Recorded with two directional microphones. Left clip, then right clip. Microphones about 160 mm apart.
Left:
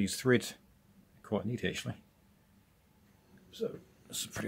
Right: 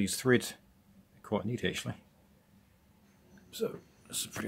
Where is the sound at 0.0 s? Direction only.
Centre (ahead or behind).